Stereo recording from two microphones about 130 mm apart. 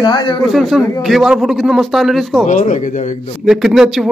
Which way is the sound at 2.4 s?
75° left (ahead or behind).